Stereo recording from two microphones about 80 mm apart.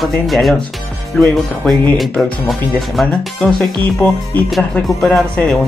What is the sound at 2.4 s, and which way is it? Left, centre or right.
Speech, centre.